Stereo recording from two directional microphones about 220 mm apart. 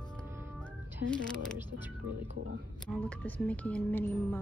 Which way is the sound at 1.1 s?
5° left (ahead or behind).